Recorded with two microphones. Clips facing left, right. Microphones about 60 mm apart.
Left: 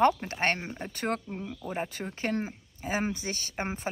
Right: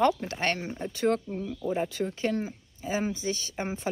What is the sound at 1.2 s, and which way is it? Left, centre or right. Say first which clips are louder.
Speech: right 5 dB; left.